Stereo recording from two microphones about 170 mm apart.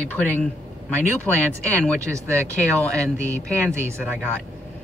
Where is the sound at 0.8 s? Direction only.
10° left (ahead or behind).